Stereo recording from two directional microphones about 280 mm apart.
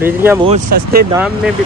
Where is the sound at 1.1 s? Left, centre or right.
Centre.